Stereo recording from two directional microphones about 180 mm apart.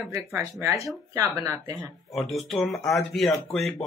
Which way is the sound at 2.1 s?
Centre (ahead or behind).